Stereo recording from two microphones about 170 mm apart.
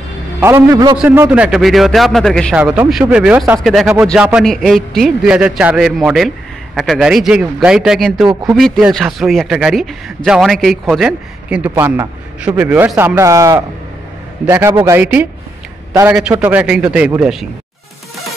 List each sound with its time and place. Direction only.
0.4 s a man's voice: 15° right (ahead or behind); by 2.5 s 5° left (ahead or behind)
2.5 s a man's voice: 10° right (ahead or behind)
16.2 s speech: 5° right (ahead or behind)